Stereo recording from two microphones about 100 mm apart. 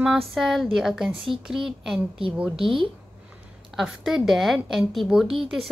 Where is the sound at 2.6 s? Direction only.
55° right (ahead or behind).